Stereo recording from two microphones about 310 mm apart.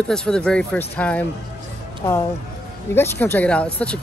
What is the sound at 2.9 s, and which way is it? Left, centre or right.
Speech, centre.